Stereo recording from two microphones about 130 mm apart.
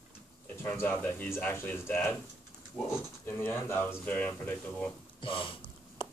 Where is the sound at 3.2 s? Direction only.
20° left (ahead or behind).